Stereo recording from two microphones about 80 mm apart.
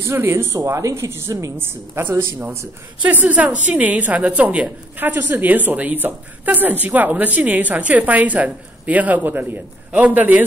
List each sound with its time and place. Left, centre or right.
0.0 s a woman's voice: right
0.6 s a woman's voice: right
1.6 s a woman's voice: right
3.0 s a woman's voice: centre